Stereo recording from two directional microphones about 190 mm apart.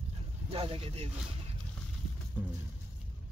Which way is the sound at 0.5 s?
30° right (ahead or behind).